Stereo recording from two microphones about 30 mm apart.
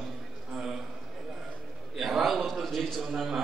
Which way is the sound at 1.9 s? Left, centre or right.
Centre.